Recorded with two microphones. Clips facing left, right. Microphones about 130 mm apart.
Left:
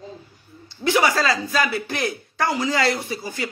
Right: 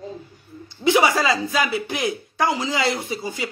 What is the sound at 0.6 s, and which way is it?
A man's voice, 20° right (ahead or behind).